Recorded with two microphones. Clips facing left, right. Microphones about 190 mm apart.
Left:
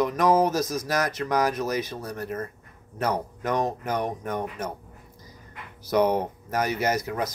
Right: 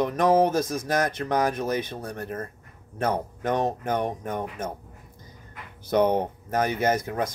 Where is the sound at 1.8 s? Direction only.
55° right (ahead or behind).